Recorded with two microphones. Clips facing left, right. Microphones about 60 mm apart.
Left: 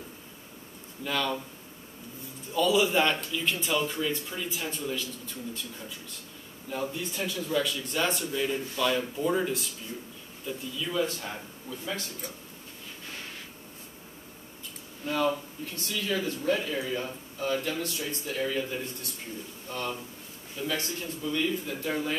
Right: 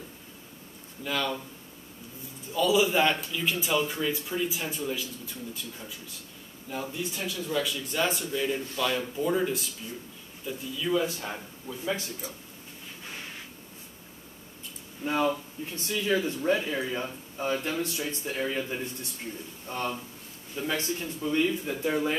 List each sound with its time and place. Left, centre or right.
1.0 s speech: centre
2.5 s speech: centre
15.0 s speech: right